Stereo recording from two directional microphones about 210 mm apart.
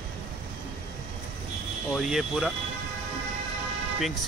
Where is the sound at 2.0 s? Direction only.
Centre (ahead or behind).